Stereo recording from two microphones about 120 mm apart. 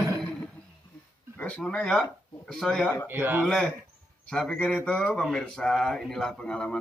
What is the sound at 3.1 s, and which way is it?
Speech, 15° right (ahead or behind).